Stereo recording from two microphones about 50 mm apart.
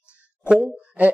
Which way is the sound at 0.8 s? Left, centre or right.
Right.